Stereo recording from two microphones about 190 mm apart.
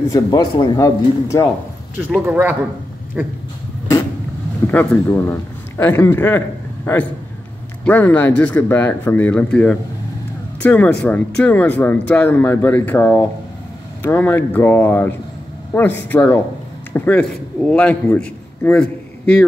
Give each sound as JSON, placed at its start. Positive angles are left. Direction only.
{"t": 0.1, "sound": "a man's voice", "side_deg": 20}
{"t": 2.0, "sound": "speech", "side_deg": -10}
{"t": 4.6, "sound": "a man's voice", "side_deg": 10}
{"t": 7.8, "sound": "a man's voice", "side_deg": 10}